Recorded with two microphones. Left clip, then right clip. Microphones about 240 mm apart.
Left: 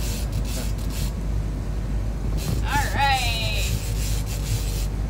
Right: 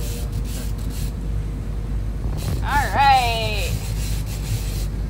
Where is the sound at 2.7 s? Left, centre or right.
Centre.